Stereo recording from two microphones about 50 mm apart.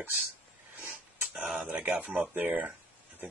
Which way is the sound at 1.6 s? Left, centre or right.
Right.